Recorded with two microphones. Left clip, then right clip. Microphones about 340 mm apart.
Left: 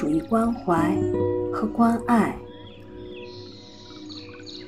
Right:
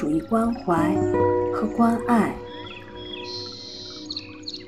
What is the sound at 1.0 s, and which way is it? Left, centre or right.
Speech, centre.